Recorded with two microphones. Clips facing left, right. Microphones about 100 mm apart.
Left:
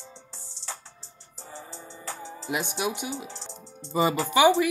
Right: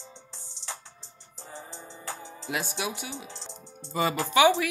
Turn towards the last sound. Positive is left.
turn(degrees=5)  # may be behind; listen again after turning